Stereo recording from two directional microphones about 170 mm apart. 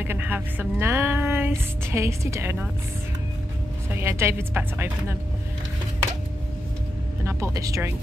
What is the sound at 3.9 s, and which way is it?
Speech, 15° right (ahead or behind).